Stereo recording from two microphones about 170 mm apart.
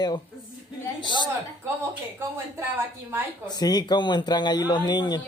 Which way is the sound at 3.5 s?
25° left (ahead or behind).